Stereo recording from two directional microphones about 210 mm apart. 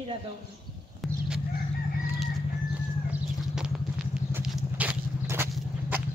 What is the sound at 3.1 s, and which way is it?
Vehicle, 5° right (ahead or behind).